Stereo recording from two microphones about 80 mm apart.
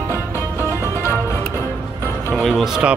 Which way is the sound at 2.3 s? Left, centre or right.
Centre.